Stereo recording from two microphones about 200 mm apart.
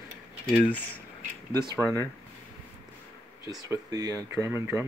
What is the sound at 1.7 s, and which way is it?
Speech, 10° left (ahead or behind).